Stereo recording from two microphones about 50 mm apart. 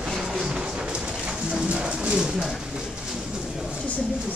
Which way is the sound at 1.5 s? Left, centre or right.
Centre.